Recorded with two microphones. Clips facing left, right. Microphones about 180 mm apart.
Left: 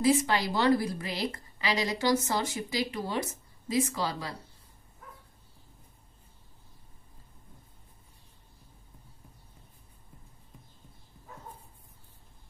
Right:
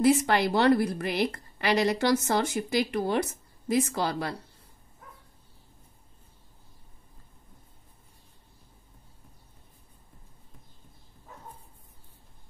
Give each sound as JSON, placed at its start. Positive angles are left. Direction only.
{"t": 0.0, "sound": "a woman's voice", "side_deg": -60}